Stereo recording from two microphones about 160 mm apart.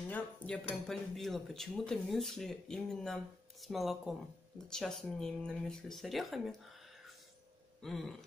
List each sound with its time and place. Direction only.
0.1 s cutlery: 10° left (ahead or behind)
0.8 s speech: centre (ahead or behind)